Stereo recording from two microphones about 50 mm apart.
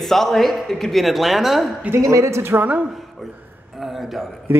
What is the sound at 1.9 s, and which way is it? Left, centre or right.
Speech, right.